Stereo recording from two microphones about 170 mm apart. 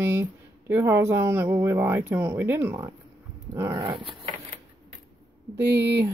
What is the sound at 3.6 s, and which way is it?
Dog, 20° right (ahead or behind).